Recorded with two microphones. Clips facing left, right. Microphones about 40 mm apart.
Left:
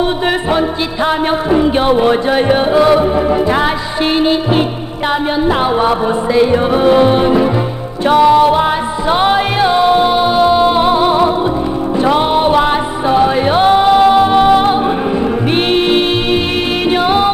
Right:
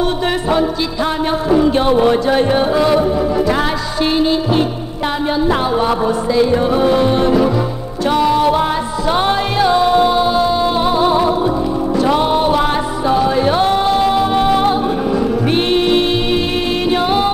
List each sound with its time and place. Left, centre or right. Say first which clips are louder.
0.5 s music: left 1 dB; left